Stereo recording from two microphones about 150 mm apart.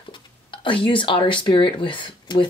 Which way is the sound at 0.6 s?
35° left (ahead or behind).